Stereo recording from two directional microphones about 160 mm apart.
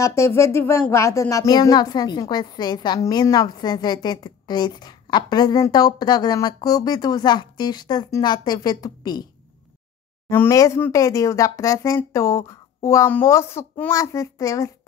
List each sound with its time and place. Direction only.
0.0 s speech: 20° left (ahead or behind)
10.3 s speech: 15° left (ahead or behind)